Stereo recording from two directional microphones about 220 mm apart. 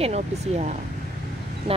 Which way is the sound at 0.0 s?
30° right (ahead or behind).